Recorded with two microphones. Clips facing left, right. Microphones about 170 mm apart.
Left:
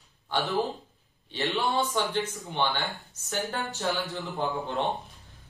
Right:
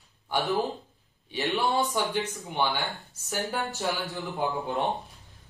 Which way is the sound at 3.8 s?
20° right (ahead or behind).